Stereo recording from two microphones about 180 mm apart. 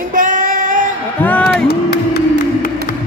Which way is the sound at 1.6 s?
60° left (ahead or behind).